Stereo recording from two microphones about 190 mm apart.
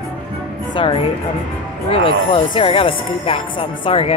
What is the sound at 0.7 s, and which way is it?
Speech, 25° left (ahead or behind).